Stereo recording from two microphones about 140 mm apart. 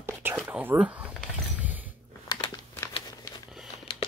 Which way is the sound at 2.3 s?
30° left (ahead or behind).